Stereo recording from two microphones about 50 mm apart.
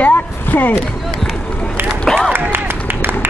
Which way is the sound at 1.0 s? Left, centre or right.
Centre.